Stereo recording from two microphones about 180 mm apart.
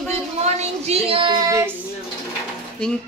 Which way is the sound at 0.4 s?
35° right (ahead or behind).